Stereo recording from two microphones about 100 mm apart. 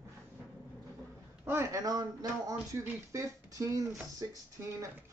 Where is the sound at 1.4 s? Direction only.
30° right (ahead or behind).